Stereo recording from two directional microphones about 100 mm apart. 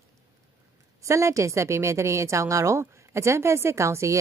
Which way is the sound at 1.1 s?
30° right (ahead or behind).